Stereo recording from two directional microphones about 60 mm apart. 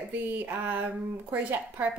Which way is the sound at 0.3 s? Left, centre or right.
Right.